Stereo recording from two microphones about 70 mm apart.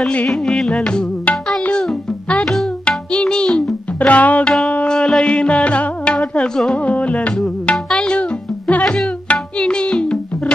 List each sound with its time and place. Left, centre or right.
0.3 s music: centre